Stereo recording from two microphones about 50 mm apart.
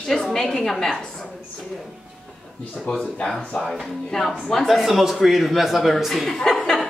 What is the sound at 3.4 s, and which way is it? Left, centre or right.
Speech, left.